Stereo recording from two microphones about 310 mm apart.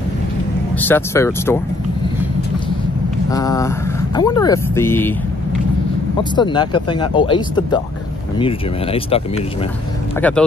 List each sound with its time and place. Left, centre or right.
0.7 s speech: centre
3.3 s speech: centre
6.3 s speech: centre
10.2 s speech: centre